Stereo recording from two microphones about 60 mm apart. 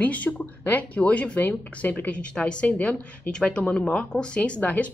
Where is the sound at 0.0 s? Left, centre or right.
Left.